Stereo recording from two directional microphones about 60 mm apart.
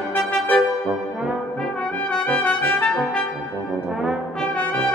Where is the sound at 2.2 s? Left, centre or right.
Left.